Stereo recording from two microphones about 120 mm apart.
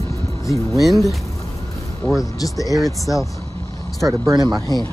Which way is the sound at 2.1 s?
30° left (ahead or behind).